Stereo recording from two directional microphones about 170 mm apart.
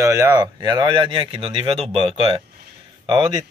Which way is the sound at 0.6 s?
25° right (ahead or behind).